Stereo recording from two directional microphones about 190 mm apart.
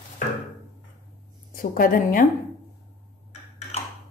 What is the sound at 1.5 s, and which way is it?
Speech, 50° left (ahead or behind).